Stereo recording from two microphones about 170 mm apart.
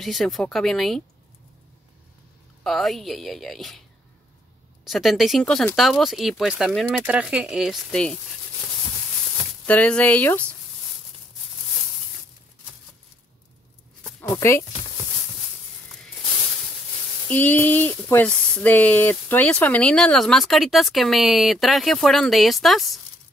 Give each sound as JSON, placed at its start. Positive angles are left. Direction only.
{"t": 0.0, "sound": "speech", "side_deg": 0}
{"t": 2.6, "sound": "speech", "side_deg": 0}
{"t": 4.8, "sound": "speech", "side_deg": 0}
{"t": 9.7, "sound": "speech", "side_deg": 10}
{"t": 14.2, "sound": "speech", "side_deg": 15}
{"t": 17.3, "sound": "speech", "side_deg": 10}